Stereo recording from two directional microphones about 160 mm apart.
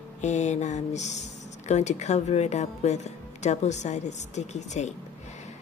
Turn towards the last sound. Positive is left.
turn(degrees=45)  # may be behind; listen again after turning